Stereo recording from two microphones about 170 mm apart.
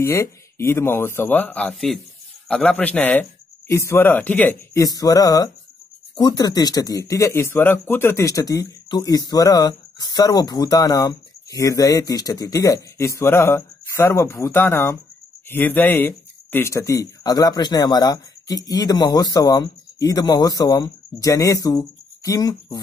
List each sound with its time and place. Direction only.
0.0 s speech: 15° left (ahead or behind)